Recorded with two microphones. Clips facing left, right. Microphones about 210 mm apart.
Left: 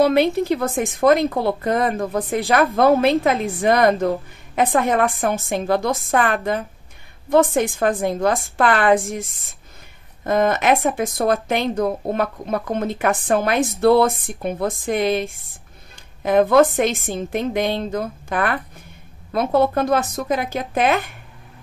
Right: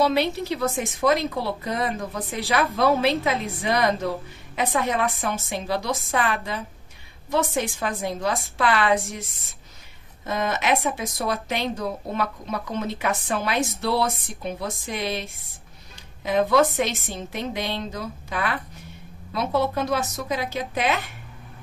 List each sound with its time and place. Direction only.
0.0 s speech: 50° left (ahead or behind)